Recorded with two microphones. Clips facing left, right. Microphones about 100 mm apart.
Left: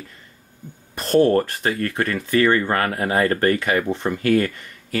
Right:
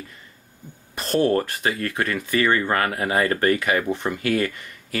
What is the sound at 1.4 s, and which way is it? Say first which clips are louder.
Speech: left 2 dB; 15° right (ahead or behind).